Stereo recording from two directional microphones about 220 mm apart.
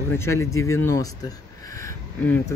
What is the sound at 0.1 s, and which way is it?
Speech, 10° left (ahead or behind).